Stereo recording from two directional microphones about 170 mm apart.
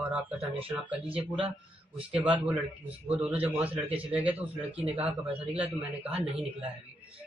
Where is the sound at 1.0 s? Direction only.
30° right (ahead or behind).